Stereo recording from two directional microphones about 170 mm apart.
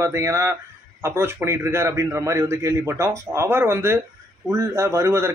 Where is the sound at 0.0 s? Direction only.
20° right (ahead or behind).